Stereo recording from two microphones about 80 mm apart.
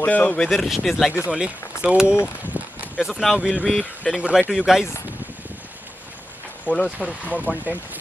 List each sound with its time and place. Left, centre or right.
0.0 s speech: centre
0.5 s speech: centre
1.3 s speech: centre
2.6 s a sound: right
3.0 s speech: centre
4.2 s speech: centre
6.6 s speech: centre
7.2 s speech: centre